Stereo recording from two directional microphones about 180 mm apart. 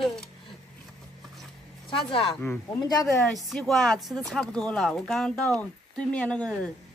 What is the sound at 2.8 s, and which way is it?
Speech, 20° left (ahead or behind).